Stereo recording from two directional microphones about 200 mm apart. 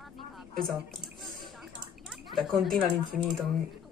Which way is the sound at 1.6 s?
Centre (ahead or behind).